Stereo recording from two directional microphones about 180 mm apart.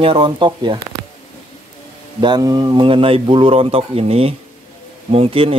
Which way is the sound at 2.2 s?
25° right (ahead or behind).